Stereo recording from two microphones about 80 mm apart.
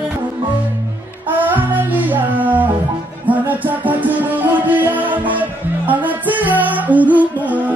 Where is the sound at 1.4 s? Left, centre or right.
Right.